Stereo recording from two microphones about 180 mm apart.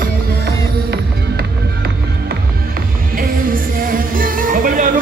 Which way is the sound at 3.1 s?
50° right (ahead or behind).